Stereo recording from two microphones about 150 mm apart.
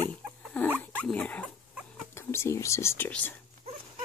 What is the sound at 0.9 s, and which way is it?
Dog, 10° left (ahead or behind).